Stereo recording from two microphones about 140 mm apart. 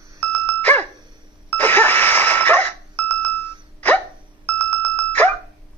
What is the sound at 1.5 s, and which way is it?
Doorbell, 15° left (ahead or behind).